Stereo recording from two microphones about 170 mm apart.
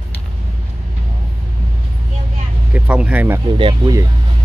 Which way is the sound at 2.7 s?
5° right (ahead or behind).